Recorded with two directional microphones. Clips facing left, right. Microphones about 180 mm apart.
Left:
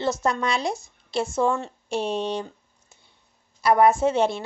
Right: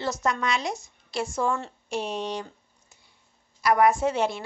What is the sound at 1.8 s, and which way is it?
Speech, 30° left (ahead or behind).